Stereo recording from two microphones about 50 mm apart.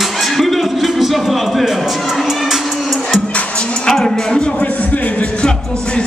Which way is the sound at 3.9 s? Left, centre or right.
Centre.